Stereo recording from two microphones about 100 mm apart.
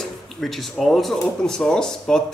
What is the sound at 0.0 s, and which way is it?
Speech, centre (ahead or behind).